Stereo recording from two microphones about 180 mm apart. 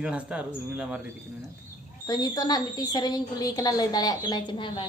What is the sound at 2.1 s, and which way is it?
A woman's voice, 20° left (ahead or behind).